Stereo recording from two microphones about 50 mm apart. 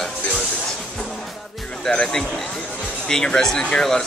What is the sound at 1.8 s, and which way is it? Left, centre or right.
Speech, centre.